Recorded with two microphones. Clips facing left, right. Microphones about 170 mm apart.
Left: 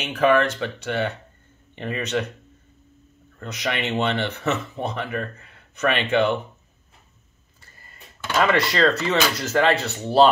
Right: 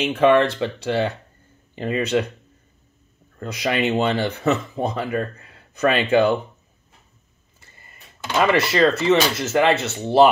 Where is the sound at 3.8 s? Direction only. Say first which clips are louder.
Right 3 dB; 35° right (ahead or behind).